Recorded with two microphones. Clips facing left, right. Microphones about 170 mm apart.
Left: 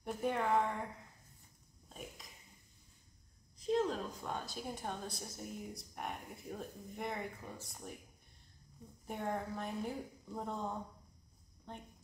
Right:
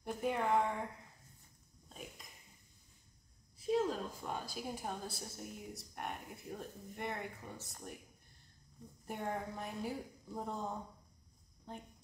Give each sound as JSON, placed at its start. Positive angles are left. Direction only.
{"t": 0.0, "sound": "a woman's voice", "side_deg": -5}
{"t": 1.9, "sound": "a sound", "side_deg": 0}
{"t": 3.5, "sound": "a woman's voice", "side_deg": -10}
{"t": 9.0, "sound": "a woman's voice", "side_deg": 0}